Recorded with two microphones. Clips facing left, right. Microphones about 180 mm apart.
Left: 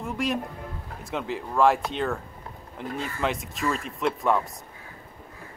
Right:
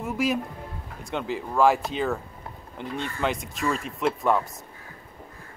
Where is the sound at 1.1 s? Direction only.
Centre (ahead or behind).